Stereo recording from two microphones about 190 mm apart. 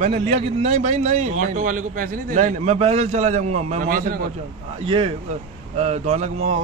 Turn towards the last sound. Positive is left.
turn(degrees=-35)  # may be behind; listen again after turning